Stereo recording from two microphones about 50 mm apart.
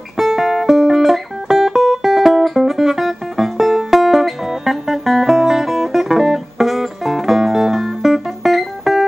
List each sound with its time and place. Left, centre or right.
0.2 s music: centre